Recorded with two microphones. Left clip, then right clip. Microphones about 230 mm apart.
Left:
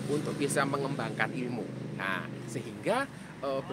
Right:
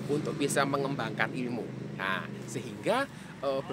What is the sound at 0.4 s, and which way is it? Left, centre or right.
Speech, centre.